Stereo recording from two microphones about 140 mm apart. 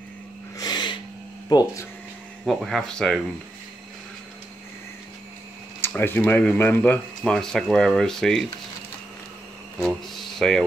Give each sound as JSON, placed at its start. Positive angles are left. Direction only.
{"t": 0.6, "sound": "a sound", "side_deg": 30}
{"t": 1.5, "sound": "speech", "side_deg": 30}
{"t": 2.4, "sound": "speech", "side_deg": 0}
{"t": 5.8, "sound": "speech", "side_deg": 15}
{"t": 9.8, "sound": "speech", "side_deg": 5}